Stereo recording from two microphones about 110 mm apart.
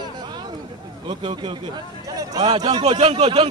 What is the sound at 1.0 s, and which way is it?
Speech, 45° right (ahead or behind).